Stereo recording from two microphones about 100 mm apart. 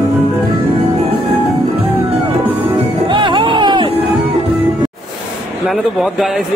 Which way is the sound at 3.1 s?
55° right (ahead or behind).